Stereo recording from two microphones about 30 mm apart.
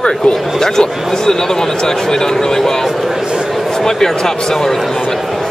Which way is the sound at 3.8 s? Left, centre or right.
Centre.